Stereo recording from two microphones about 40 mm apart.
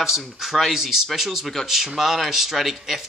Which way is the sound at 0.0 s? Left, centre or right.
Centre.